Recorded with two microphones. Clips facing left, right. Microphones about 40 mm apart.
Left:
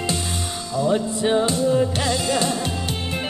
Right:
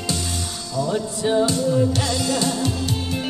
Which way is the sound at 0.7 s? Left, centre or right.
Left.